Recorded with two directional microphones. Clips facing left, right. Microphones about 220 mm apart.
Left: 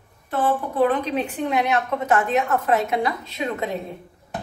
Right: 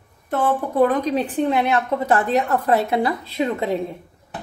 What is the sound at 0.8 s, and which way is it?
A woman's voice, 40° right (ahead or behind).